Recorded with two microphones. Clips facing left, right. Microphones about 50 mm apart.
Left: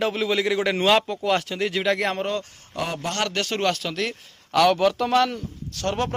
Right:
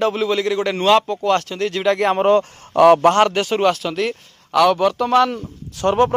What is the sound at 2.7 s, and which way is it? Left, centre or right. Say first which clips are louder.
Speech: right 18 dB; right.